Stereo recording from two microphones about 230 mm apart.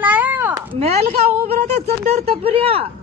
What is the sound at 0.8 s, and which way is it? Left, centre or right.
Speech, right.